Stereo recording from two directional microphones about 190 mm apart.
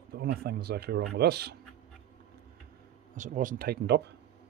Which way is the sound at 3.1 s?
40° right (ahead or behind).